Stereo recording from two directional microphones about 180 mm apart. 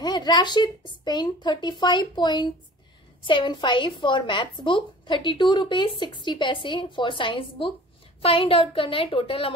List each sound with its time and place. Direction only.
0.0 s a woman's voice: 25° left (ahead or behind)